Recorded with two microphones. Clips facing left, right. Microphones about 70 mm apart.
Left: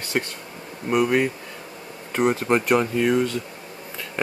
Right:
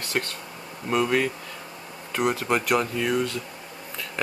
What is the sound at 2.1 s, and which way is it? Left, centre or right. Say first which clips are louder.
Speech: left 4 dB; left.